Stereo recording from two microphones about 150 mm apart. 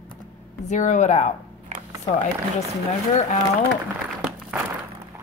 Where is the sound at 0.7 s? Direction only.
50° left (ahead or behind).